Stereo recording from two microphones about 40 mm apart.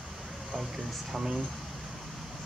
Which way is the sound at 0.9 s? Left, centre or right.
Centre.